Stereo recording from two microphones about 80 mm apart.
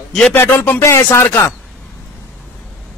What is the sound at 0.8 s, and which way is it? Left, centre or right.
Speech, left.